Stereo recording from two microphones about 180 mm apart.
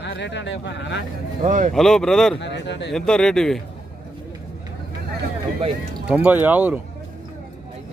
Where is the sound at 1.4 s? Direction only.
45° right (ahead or behind).